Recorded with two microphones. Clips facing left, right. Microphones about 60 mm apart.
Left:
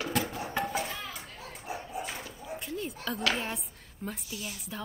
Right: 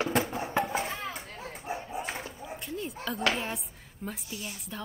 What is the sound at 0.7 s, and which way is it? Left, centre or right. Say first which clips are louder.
Chop: right 2 dB; right.